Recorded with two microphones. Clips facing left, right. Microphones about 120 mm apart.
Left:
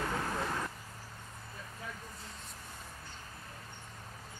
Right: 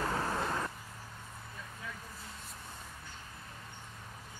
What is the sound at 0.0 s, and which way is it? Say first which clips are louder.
Vehicle: right 1 dB; 35° right (ahead or behind).